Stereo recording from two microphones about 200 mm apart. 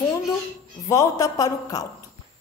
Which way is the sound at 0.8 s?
15° left (ahead or behind).